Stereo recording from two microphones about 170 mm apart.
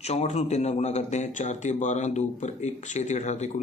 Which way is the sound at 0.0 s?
40° left (ahead or behind).